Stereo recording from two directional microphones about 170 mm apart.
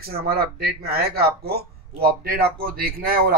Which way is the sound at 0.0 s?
65° right (ahead or behind).